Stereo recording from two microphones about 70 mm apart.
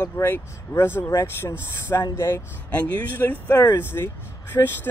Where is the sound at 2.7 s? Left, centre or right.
Left.